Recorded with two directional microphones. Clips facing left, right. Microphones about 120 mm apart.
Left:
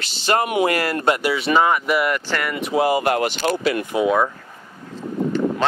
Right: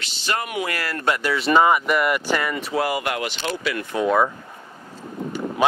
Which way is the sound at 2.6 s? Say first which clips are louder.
Left 5 dB; 20° left (ahead or behind).